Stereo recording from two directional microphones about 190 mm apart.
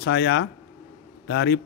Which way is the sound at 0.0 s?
65° left (ahead or behind).